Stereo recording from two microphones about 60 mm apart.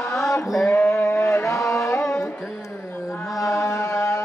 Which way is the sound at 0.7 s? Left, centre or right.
Left.